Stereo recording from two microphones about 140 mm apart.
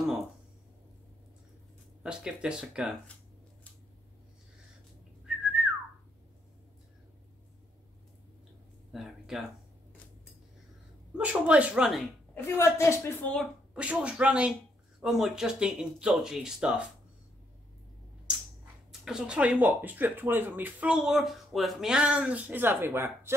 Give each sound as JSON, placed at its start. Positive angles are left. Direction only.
{"t": 2.0, "sound": "speech", "side_deg": -5}
{"t": 5.2, "sound": "whistling", "side_deg": -5}
{"t": 8.9, "sound": "a sound", "side_deg": -5}
{"t": 11.1, "sound": "speech", "side_deg": -10}
{"t": 12.4, "sound": "a woman's voice", "side_deg": 20}
{"t": 13.7, "sound": "speech", "side_deg": -10}
{"t": 18.9, "sound": "speech", "side_deg": -5}